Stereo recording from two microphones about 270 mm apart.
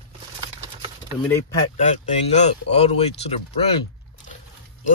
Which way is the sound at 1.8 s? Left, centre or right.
Left.